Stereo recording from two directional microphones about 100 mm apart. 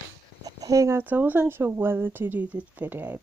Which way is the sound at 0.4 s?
40° right (ahead or behind).